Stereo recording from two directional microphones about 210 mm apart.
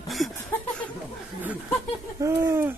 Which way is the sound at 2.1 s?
15° right (ahead or behind).